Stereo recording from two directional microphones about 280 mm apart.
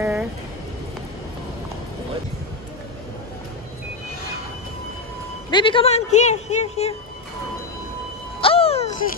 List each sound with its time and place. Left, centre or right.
0.0 s a sound: centre
5.5 s speech: centre
8.4 s music: centre